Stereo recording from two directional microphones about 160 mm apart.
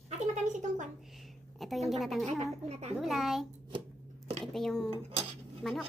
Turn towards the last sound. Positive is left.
turn(degrees=5)  # may be behind; listen again after turning